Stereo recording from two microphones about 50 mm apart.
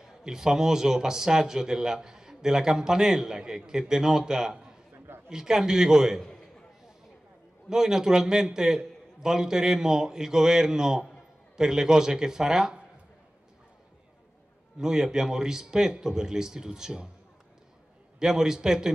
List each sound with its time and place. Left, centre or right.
0.0 s a man's voice: centre
4.9 s a sound: right
5.3 s a man's voice: centre
7.7 s a man's voice: centre
14.8 s a man's voice: centre
18.2 s a man's voice: centre